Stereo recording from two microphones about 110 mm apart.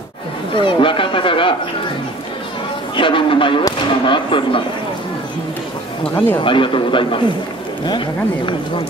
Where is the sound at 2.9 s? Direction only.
50° left (ahead or behind).